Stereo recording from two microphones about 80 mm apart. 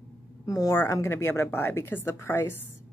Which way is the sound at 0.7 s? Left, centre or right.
Left.